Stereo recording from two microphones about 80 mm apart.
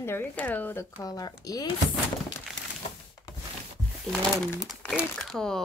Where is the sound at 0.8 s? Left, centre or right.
Left.